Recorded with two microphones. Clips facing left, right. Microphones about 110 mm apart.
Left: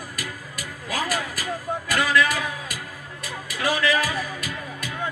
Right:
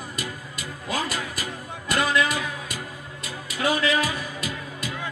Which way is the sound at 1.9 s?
25° right (ahead or behind).